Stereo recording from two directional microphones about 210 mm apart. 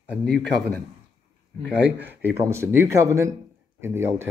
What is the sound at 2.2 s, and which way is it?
Speech, 10° right (ahead or behind).